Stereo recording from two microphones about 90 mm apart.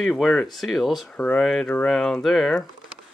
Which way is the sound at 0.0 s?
5° left (ahead or behind).